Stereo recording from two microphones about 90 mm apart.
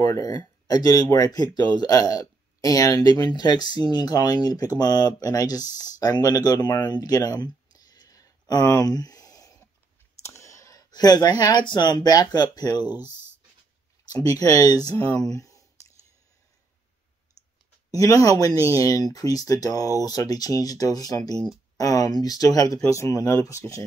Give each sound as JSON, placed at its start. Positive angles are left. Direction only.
{"t": 0.0, "sound": "speech", "side_deg": 45}
{"t": 8.8, "sound": "a sound", "side_deg": 45}
{"t": 10.2, "sound": "speech", "side_deg": 35}
{"t": 14.0, "sound": "speech", "side_deg": 45}
{"t": 17.9, "sound": "speech", "side_deg": 40}
{"t": 21.7, "sound": "a sound", "side_deg": 40}
{"t": 22.2, "sound": "speech", "side_deg": 45}